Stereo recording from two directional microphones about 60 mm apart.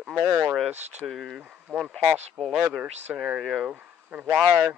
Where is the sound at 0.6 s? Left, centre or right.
Centre.